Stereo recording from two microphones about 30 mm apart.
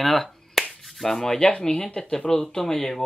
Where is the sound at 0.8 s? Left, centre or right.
Centre.